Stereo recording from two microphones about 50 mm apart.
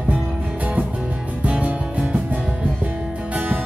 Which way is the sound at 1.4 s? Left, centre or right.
Right.